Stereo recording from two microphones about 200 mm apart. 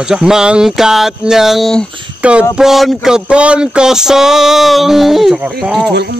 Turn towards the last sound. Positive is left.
turn(degrees=-55)  # may be behind; listen again after turning